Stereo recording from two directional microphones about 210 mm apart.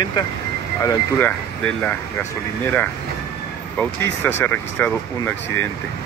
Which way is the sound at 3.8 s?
10° left (ahead or behind).